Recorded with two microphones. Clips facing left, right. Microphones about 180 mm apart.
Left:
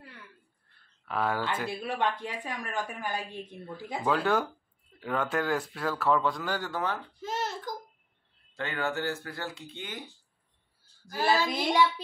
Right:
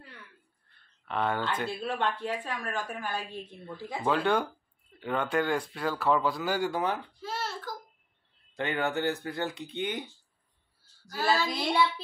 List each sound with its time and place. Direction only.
1.0 s speech: 5° left (ahead or behind)
4.0 s speech: centre (ahead or behind)
7.2 s a sound: 20° left (ahead or behind)
8.5 s speech: 20° right (ahead or behind)
11.1 s speech: 20° left (ahead or behind)